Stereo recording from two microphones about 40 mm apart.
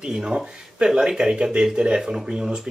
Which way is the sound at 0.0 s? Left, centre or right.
Centre.